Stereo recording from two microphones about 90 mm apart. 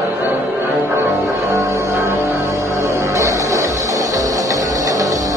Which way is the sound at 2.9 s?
35° right (ahead or behind).